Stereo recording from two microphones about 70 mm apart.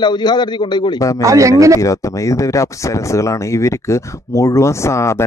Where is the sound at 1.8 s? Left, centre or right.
Left.